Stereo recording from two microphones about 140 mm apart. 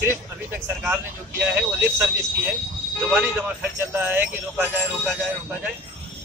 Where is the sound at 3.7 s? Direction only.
15° right (ahead or behind).